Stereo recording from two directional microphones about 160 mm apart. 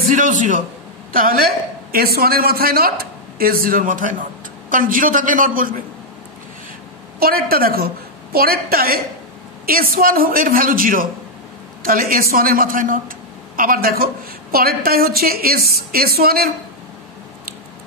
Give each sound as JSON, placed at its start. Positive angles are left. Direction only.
{"t": 0.1, "sound": "a man's voice", "side_deg": -55}
{"t": 1.1, "sound": "a woman's voice", "side_deg": -65}
{"t": 7.2, "sound": "a woman's voice", "side_deg": -70}